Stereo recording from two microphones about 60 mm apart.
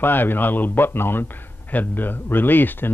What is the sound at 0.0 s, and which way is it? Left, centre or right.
Speech, left.